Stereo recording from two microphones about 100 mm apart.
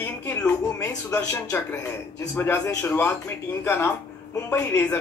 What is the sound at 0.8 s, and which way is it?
Speech, 30° left (ahead or behind).